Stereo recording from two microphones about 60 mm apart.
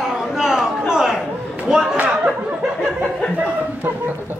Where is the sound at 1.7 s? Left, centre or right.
Centre.